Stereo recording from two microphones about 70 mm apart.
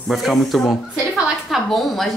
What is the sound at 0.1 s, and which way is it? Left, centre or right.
A woman's voice, centre.